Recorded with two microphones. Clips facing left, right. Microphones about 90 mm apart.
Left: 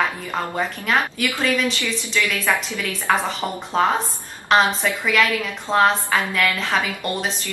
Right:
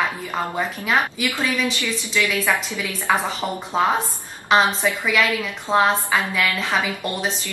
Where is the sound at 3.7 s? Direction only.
5° right (ahead or behind).